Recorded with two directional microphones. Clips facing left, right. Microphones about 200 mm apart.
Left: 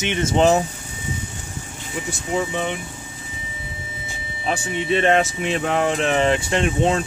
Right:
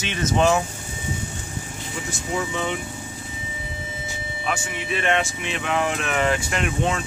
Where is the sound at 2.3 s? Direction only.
20° left (ahead or behind).